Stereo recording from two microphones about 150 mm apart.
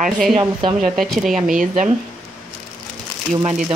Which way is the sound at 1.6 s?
55° right (ahead or behind).